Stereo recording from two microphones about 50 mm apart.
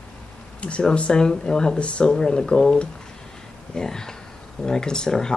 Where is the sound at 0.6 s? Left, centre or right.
Left.